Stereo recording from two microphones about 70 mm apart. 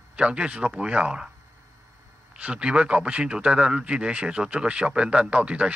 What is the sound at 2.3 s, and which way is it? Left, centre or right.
A man's voice, centre.